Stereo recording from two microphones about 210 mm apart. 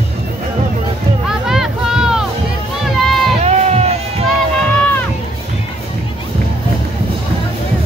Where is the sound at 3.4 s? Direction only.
30° right (ahead or behind).